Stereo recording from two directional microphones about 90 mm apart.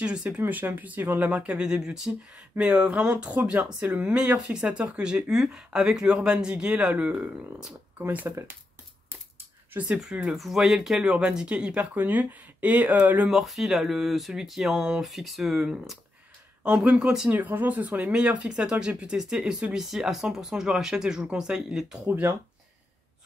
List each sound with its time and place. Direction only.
0.0 s speech: 10° right (ahead or behind)
9.8 s speech: 10° right (ahead or behind)
13.3 s speech: 5° right (ahead or behind)
17.3 s speech: 20° right (ahead or behind)